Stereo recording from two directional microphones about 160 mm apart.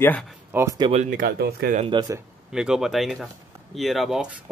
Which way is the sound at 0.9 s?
55° right (ahead or behind).